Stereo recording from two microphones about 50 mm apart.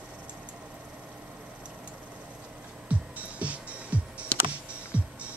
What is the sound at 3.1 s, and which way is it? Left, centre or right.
Music, right.